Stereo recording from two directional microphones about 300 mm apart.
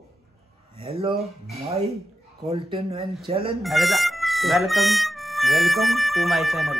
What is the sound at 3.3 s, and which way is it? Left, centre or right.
Speech, centre.